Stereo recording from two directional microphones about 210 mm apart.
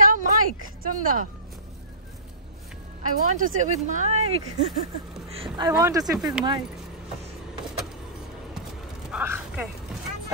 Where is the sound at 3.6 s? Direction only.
35° right (ahead or behind).